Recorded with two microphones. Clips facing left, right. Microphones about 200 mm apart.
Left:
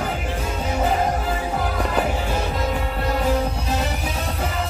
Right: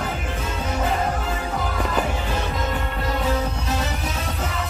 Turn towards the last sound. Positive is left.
turn(degrees=5)  # may be behind; listen again after turning